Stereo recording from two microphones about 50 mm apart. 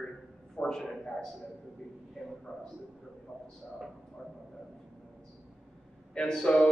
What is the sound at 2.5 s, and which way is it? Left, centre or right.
Speech, left.